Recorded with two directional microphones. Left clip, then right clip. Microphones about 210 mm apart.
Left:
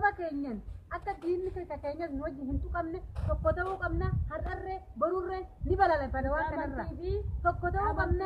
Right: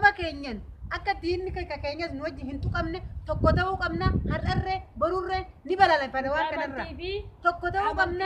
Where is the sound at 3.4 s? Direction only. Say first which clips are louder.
Right 6 dB; 10° right (ahead or behind).